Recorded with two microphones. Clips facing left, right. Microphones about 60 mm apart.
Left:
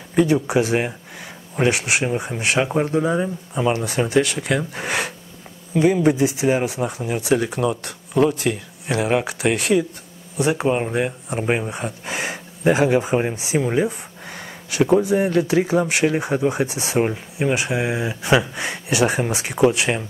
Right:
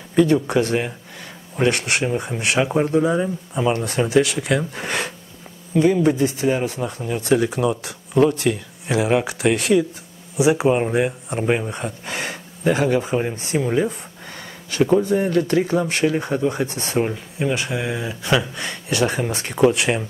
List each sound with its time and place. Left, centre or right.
0.1 s speech: centre